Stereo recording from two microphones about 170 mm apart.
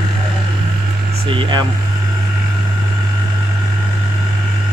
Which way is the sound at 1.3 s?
30° right (ahead or behind).